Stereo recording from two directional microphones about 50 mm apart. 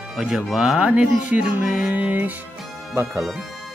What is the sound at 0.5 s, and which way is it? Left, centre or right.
Speech, centre.